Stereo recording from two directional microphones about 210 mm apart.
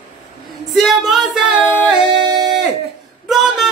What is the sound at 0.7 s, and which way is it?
Music, centre (ahead or behind).